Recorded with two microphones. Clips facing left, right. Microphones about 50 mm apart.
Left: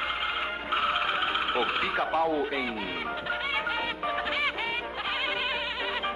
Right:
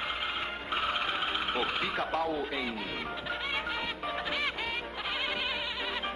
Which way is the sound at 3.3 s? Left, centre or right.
Centre.